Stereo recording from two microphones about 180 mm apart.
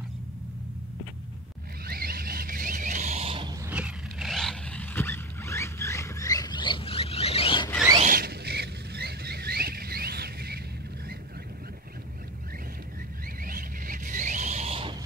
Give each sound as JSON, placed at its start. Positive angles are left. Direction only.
{"t": 1.9, "sound": "a sound", "side_deg": -55}
{"t": 3.6, "sound": "vehicle", "side_deg": -5}
{"t": 8.0, "sound": "boat", "side_deg": -55}
{"t": 13.4, "sound": "vehicle", "side_deg": -50}